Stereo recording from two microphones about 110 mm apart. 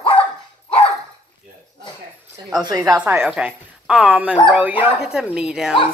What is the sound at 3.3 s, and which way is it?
Speech, 5° right (ahead or behind).